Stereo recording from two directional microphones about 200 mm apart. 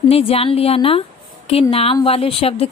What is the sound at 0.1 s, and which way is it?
A woman's voice, 30° left (ahead or behind).